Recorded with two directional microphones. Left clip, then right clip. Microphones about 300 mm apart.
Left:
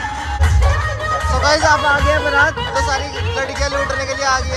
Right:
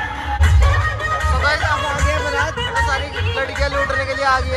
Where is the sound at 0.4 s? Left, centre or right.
Left.